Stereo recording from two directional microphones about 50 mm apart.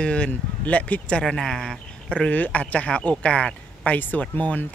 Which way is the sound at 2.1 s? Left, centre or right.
Left.